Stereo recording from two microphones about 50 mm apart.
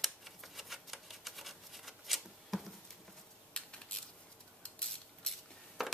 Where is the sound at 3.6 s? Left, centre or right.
Left.